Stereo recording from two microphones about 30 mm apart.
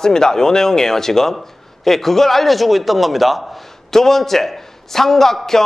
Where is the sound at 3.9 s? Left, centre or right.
Centre.